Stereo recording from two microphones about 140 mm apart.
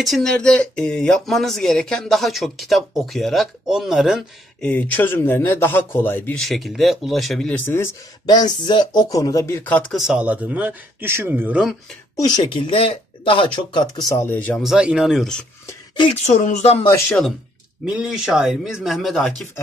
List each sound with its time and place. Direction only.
0.0 s speech: centre (ahead or behind)
4.6 s a man's voice: 15° left (ahead or behind)
6.3 s speech: centre (ahead or behind)
8.3 s speech: 30° left (ahead or behind); by 9.9 s 10° left (ahead or behind)
9.9 s speech: 5° right (ahead or behind)
12.5 s speech: 40° left (ahead or behind); by 14.3 s 25° left (ahead or behind)
14.3 s a man's voice: 10° left (ahead or behind)
14.6 s speech: 5° right (ahead or behind)
16.3 s speech: 55° left (ahead or behind)
17.8 s speech: 5° right (ahead or behind)